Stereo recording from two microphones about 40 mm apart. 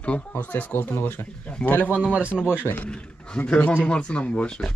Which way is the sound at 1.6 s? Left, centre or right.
Left.